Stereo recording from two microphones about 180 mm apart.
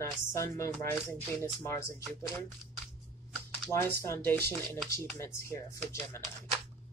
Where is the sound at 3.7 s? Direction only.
15° left (ahead or behind).